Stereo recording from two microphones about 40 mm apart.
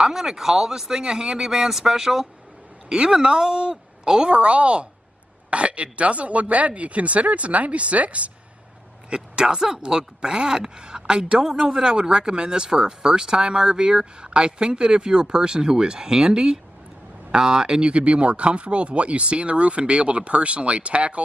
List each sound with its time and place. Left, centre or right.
0.0 s a man's voice: centre; by 8.3 s right
9.1 s speech: centre